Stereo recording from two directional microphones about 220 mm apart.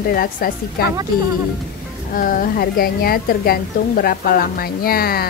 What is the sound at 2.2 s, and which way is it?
A woman's voice, 40° left (ahead or behind).